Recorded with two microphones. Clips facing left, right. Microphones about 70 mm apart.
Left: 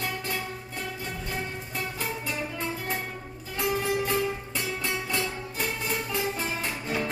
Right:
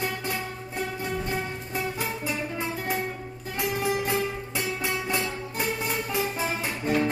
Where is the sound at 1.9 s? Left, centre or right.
Centre.